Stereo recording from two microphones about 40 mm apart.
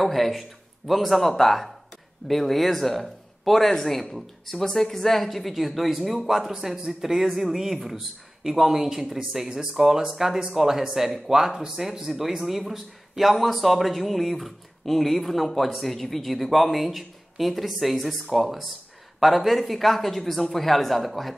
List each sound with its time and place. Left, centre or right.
0.0 s speech: centre